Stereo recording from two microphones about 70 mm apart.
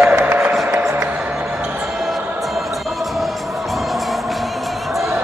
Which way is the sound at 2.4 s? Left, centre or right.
Centre.